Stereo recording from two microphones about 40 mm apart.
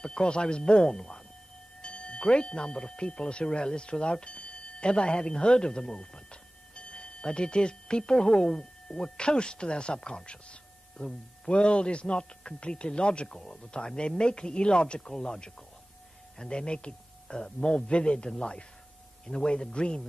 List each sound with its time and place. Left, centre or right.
0.0 s a man's voice: left
15.0 s a man's voice: centre